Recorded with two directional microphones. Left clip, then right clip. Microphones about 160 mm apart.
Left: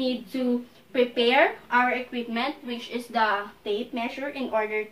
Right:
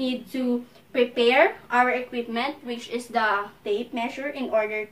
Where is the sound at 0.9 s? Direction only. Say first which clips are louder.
Right 2 dB; 20° right (ahead or behind).